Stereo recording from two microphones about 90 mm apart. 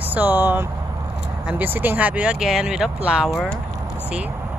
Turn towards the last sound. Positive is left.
turn(degrees=-10)  # may be behind; listen again after turning